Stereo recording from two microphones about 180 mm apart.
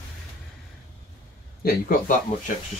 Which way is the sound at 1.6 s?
55° left (ahead or behind).